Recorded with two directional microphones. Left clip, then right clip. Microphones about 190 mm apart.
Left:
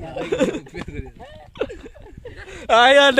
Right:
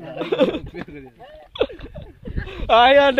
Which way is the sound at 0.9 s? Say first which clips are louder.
Left 2 dB; 70° left (ahead or behind).